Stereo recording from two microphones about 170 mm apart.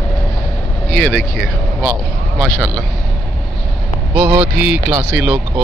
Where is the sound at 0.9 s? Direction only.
Centre (ahead or behind).